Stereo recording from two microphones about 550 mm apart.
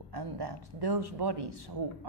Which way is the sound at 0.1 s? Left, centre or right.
Right.